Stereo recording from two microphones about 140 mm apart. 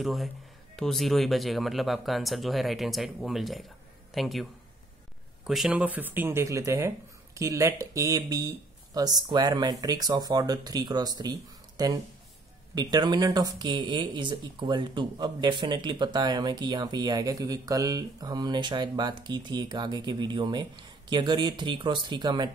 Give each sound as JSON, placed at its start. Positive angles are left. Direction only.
{"t": 0.0, "sound": "speech", "side_deg": 0}